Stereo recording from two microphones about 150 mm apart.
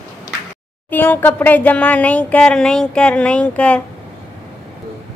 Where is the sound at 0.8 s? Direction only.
10° left (ahead or behind).